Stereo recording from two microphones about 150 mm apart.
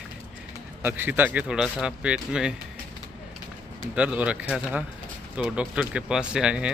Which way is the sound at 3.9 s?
10° right (ahead or behind).